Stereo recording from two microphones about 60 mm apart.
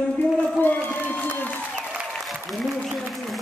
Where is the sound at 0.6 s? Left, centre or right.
Left.